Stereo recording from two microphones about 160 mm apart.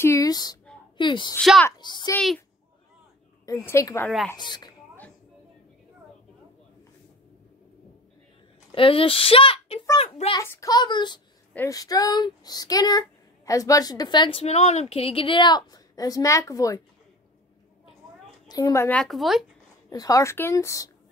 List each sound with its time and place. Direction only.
0.0 s a sound: 20° left (ahead or behind)
0.9 s a woman's voice: 30° left (ahead or behind)
1.4 s a child's voice: centre (ahead or behind)
1.8 s a sound: 30° left (ahead or behind)
2.1 s a child's voice: 5° left (ahead or behind)
3.4 s a woman's voice: 20° left (ahead or behind)
8.7 s a child's voice: 35° left (ahead or behind)
10.4 s a woman's voice: 20° left (ahead or behind)
18.5 s speech: 20° left (ahead or behind); by 19.4 s centre (ahead or behind)
19.9 s a woman's voice: 25° left (ahead or behind)